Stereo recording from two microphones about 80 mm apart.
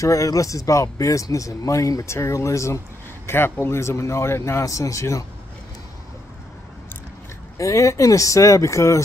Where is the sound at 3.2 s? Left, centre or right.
Left.